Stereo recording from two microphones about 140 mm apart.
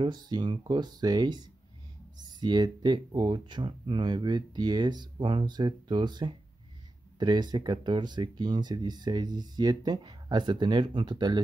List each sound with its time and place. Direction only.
0.0 s speech: 30° right (ahead or behind)